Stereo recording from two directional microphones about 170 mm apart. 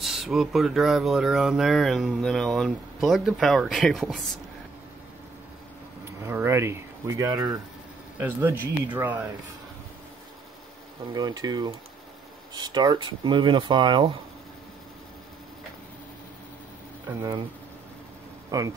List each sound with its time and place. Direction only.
0.0 s speech: centre (ahead or behind)
6.2 s speech: 15° right (ahead or behind)
11.1 s speech: 25° right (ahead or behind)
18.5 s speech: 20° right (ahead or behind)